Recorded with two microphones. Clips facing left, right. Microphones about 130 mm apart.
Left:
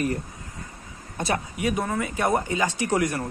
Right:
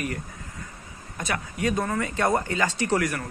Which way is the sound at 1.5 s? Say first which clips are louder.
Right 4 dB; 10° left (ahead or behind).